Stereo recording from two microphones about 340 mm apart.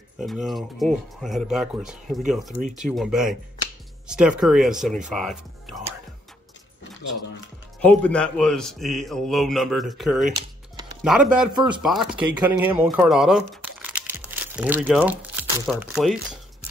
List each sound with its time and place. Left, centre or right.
0.2 s a man's voice: centre
7.8 s a man's voice: centre
11.3 s a man's voice: centre